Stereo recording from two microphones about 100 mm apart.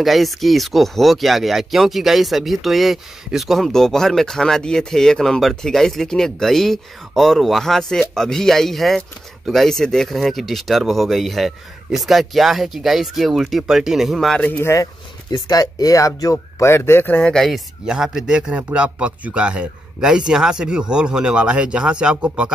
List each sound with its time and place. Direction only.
0.0 s speech: centre (ahead or behind)
14.4 s speech: 20° left (ahead or behind)
15.3 s speech: 40° left (ahead or behind); by 17.3 s 20° left (ahead or behind)
17.3 s a man's voice: 5° left (ahead or behind)